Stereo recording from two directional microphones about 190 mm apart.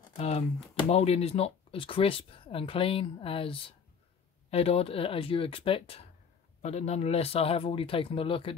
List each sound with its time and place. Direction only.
0.2 s speech: 35° left (ahead or behind)